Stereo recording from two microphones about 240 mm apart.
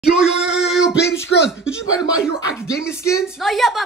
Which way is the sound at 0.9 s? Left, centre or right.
Left.